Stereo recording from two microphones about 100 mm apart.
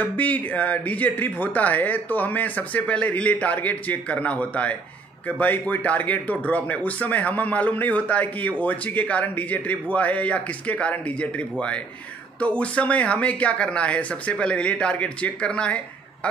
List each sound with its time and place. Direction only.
0.0 s speech: 15° left (ahead or behind)